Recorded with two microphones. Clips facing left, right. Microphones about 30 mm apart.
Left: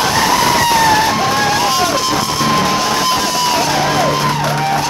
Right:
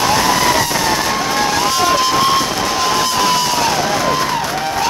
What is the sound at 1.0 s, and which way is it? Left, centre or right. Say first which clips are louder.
Music: left 2 dB; centre.